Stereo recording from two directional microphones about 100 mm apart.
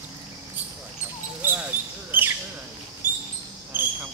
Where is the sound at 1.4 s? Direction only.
20° right (ahead or behind).